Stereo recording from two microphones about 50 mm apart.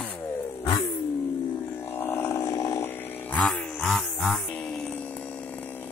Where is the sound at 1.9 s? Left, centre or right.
Left.